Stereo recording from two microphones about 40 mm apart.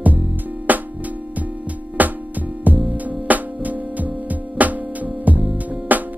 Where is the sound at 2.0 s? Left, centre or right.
Right.